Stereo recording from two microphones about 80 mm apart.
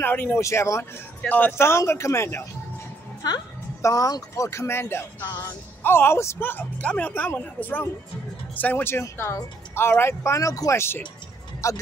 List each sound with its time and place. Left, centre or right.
0.0 s speech: left
0.4 s speech: left
3.2 s a woman's voice: left
3.8 s speech: left
6.8 s speech: centre; by 11.8 s left